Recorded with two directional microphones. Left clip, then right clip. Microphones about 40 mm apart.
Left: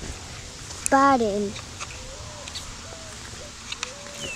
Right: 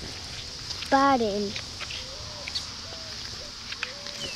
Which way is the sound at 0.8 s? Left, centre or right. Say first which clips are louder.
Left 3 dB; centre.